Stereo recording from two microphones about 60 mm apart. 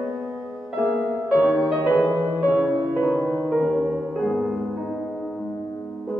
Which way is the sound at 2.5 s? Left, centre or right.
Right.